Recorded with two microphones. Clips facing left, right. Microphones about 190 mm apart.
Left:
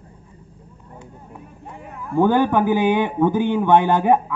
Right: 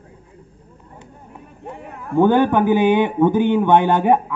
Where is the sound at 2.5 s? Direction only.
20° right (ahead or behind).